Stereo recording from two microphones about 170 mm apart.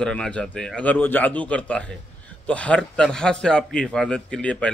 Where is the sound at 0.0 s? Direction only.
5° left (ahead or behind).